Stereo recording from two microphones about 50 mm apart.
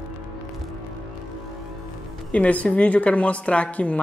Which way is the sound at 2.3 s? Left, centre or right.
Left.